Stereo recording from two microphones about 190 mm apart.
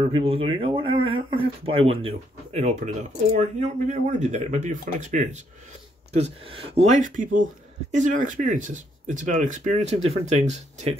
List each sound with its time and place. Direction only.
0.0 s speech: 30° right (ahead or behind)